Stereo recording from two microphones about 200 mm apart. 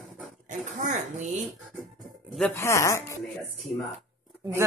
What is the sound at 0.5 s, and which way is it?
Dog, 40° right (ahead or behind).